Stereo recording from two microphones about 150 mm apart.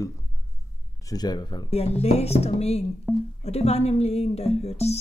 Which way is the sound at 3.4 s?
45° left (ahead or behind).